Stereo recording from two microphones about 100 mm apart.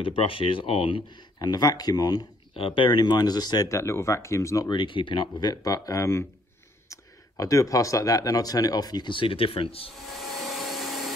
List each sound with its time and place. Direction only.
0.0 s speech: 65° left (ahead or behind)
1.4 s speech: 45° left (ahead or behind)
2.5 s speech: 60° left (ahead or behind); by 4.6 s 30° left (ahead or behind)
4.6 s speech: 50° left (ahead or behind)
5.5 s speech: 35° left (ahead or behind); by 9.8 s 70° left (ahead or behind)
10.1 s vacuum cleaner: centre (ahead or behind)